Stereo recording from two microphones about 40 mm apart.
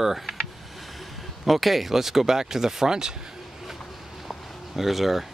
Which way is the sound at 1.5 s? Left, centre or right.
Centre.